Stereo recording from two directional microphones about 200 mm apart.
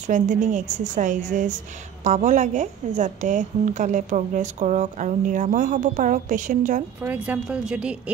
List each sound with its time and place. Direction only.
0.0 s a woman's voice: 40° right (ahead or behind)
7.0 s speech: 10° right (ahead or behind)